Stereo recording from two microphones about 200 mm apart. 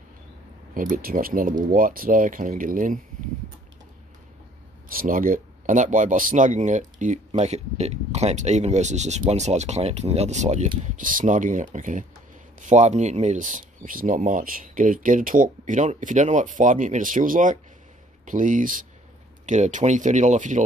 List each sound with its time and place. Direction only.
0.7 s speech: 45° right (ahead or behind)
4.9 s speech: 45° right (ahead or behind)